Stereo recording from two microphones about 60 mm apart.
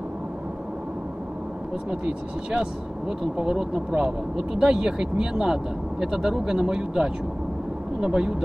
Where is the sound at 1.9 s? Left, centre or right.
Centre.